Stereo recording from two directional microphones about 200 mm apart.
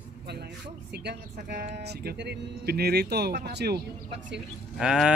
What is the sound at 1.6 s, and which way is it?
Speech, 55° right (ahead or behind).